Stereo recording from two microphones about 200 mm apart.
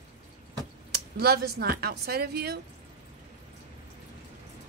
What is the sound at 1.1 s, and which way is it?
A woman's voice, 50° right (ahead or behind).